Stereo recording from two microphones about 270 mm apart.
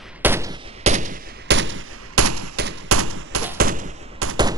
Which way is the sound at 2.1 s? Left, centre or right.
Right.